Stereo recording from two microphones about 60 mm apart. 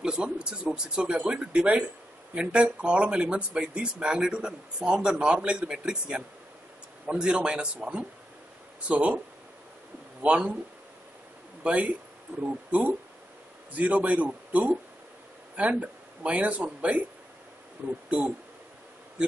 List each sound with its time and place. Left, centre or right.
0.0 s a man's voice: centre
10.2 s speech: centre
11.6 s speech: right
12.3 s speech: right
13.7 s a man's voice: right